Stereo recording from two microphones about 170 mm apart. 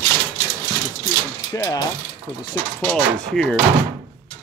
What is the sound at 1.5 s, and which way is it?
Ratchet, 20° left (ahead or behind).